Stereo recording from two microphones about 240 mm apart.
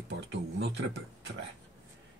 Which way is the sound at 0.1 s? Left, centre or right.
Right.